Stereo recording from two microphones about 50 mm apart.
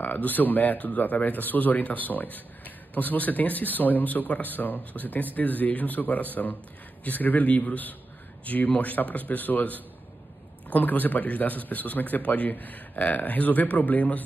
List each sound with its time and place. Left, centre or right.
0.0 s speech: left